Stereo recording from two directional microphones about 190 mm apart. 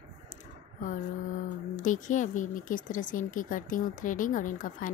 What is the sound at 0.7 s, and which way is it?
Speech, 45° left (ahead or behind).